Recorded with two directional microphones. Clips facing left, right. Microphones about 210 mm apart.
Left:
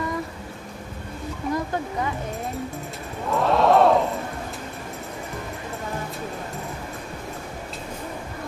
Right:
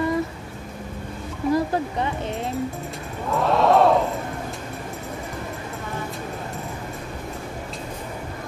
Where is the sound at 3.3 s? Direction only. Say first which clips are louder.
Even; centre (ahead or behind).